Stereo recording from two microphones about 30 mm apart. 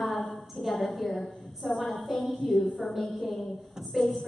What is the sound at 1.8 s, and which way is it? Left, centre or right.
A woman's voice, centre.